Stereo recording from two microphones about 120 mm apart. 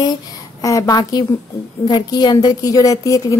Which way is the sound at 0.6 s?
30° left (ahead or behind).